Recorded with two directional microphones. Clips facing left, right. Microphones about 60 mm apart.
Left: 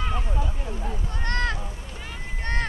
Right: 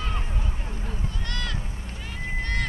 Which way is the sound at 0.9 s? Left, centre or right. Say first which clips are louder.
Left 4 dB; left.